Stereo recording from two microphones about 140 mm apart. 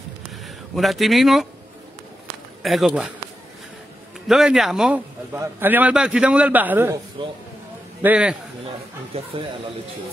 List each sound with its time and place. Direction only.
0.7 s speech: centre (ahead or behind)
2.6 s speech: centre (ahead or behind)
4.3 s speech: 5° right (ahead or behind)
5.3 s a man's voice: 15° right (ahead or behind)
7.2 s a man's voice: 35° right (ahead or behind)
8.0 s a man's voice: 10° right (ahead or behind)
9.1 s speech: 45° right (ahead or behind)